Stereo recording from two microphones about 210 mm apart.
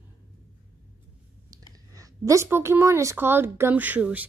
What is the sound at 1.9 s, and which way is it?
A woman's voice, 15° right (ahead or behind).